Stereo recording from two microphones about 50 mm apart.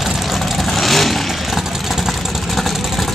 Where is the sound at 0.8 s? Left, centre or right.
Centre.